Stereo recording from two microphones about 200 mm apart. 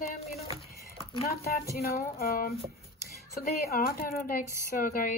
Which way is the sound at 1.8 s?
50° left (ahead or behind).